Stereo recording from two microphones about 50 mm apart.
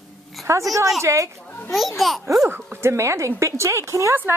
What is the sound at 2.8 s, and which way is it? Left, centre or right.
A woman's voice, right.